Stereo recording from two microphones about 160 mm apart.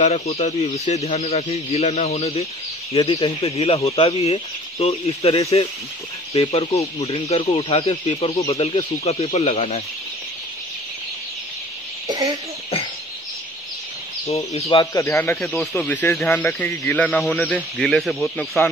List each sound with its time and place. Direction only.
0.0 s speech: 45° left (ahead or behind)
12.1 s a sound: 25° right (ahead or behind)
14.2 s speech: 40° left (ahead or behind)
15.0 s speech: 15° left (ahead or behind)